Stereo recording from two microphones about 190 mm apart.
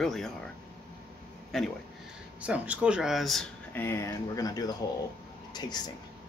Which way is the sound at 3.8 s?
15° left (ahead or behind).